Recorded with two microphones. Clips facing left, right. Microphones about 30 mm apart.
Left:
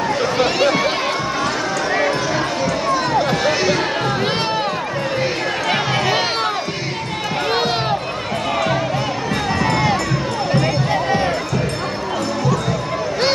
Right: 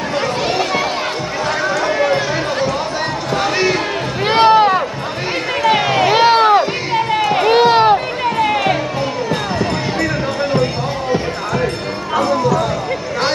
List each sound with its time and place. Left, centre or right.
4.3 s run: centre
7.4 s music: centre